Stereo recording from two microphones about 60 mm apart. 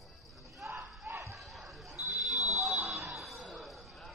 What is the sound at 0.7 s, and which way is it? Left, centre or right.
Battle cry, right.